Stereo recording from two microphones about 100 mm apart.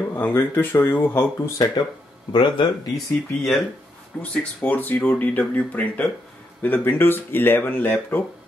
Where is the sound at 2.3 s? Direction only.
55° left (ahead or behind).